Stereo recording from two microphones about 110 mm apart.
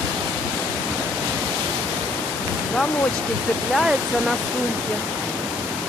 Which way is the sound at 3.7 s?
Centre (ahead or behind).